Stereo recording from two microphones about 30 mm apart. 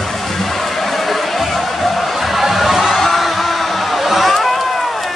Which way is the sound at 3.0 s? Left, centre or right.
Centre.